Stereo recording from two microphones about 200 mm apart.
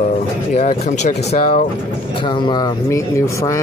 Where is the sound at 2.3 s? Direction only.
20° left (ahead or behind).